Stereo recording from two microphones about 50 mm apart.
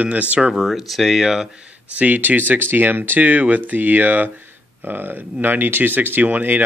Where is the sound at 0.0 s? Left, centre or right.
Right.